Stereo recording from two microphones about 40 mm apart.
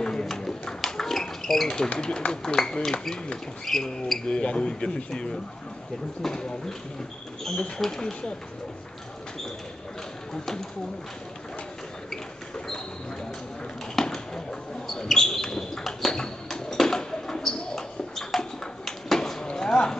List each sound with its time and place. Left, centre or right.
0.0 s a sound: centre
2.0 s speech: centre
4.3 s a man's voice: left
7.5 s a man's voice: left
10.3 s speech: centre
13.9 s basketball bounce: centre
15.0 s a sound: centre
19.5 s clip-clop: centre